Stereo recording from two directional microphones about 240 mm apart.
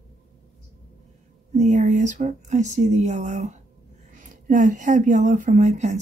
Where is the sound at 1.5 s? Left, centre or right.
Right.